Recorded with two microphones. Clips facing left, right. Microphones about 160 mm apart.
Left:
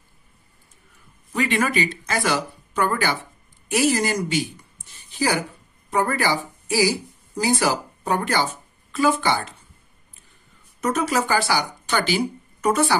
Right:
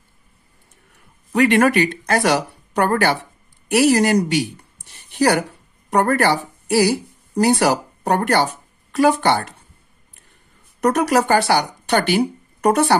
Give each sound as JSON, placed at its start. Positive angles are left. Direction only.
{"t": 0.9, "sound": "speech", "side_deg": -70}
{"t": 10.8, "sound": "speech", "side_deg": -65}